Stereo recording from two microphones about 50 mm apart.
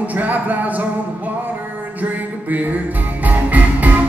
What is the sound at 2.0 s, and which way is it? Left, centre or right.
Music, right.